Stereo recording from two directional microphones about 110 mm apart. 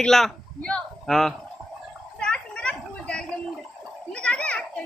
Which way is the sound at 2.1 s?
10° left (ahead or behind).